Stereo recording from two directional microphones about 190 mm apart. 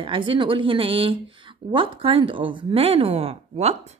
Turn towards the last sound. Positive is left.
turn(degrees=-35)  # may be behind; listen again after turning